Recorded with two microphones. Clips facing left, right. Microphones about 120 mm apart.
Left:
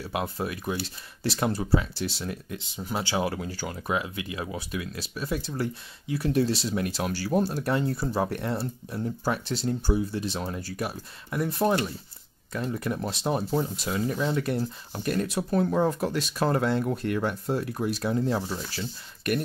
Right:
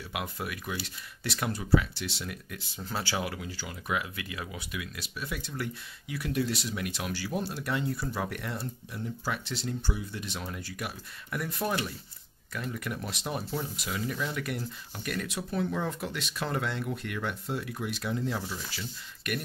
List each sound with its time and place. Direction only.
0.1 s speech: 30° left (ahead or behind)
2.6 s speech: 15° left (ahead or behind)
3.3 s speech: 45° left (ahead or behind)
3.9 s speech: 25° left (ahead or behind)
9.2 s speech: 45° left (ahead or behind)